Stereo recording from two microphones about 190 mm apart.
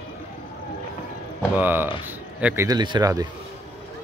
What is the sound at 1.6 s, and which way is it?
A man's voice, 10° right (ahead or behind).